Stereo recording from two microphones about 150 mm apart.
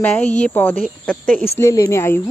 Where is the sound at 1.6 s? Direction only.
20° left (ahead or behind).